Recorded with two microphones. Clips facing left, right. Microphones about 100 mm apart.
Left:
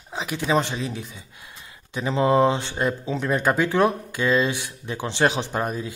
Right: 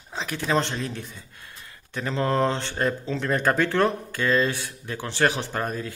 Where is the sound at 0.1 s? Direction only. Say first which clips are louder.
Left 2 dB; 15° left (ahead or behind).